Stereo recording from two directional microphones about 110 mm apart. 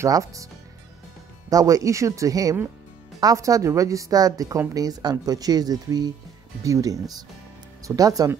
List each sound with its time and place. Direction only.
0.0 s a woman's voice: 30° right (ahead or behind)
1.5 s a woman's voice: 35° right (ahead or behind)